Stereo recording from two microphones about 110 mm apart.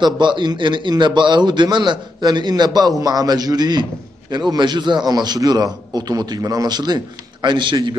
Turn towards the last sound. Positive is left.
turn(degrees=-45)  # may be behind; listen again after turning